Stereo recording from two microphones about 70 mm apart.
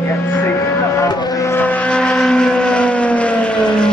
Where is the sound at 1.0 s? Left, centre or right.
Left.